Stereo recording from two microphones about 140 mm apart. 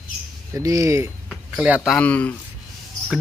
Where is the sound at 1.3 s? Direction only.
5° right (ahead or behind).